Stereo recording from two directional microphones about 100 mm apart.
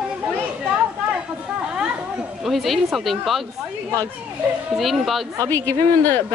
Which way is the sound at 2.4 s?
Centre (ahead or behind).